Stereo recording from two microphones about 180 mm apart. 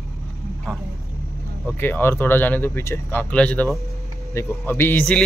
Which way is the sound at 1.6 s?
10° left (ahead or behind).